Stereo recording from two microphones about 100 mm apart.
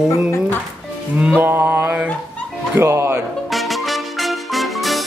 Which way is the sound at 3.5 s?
Centre (ahead or behind).